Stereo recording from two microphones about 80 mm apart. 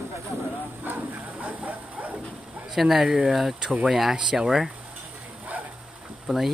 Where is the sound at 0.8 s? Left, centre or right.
Right.